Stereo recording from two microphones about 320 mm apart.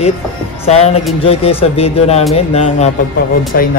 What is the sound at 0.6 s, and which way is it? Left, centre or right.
A woman's voice, centre.